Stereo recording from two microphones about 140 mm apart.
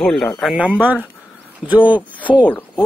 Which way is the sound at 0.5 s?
10° right (ahead or behind).